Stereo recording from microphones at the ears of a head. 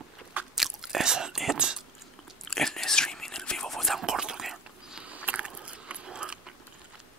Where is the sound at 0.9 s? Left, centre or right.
Right.